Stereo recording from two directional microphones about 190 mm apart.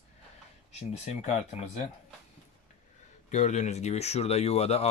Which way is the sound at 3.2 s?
40° left (ahead or behind).